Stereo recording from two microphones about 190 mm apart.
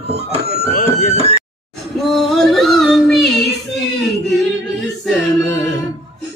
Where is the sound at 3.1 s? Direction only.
Centre (ahead or behind).